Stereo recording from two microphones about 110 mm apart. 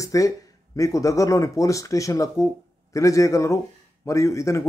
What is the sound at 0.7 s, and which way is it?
Speech, 30° left (ahead or behind).